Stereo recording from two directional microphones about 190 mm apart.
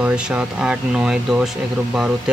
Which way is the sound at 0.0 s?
5° right (ahead or behind).